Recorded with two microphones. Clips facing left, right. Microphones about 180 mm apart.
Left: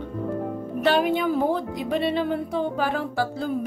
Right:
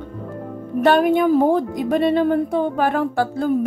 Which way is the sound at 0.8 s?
50° right (ahead or behind).